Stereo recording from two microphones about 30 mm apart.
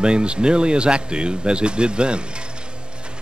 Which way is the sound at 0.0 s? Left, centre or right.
Right.